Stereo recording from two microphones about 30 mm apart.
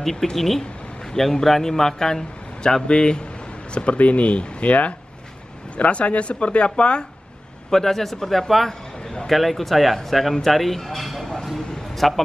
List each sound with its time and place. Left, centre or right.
0.0 s speech: centre
2.9 s speech: left
7.7 s speech: centre
11.0 s a sound: centre
12.0 s speech: centre